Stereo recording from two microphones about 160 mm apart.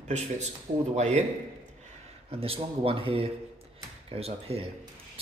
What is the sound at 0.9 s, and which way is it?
Speech, 45° right (ahead or behind).